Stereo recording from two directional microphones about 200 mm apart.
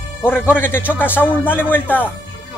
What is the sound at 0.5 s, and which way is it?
Speech, 10° left (ahead or behind).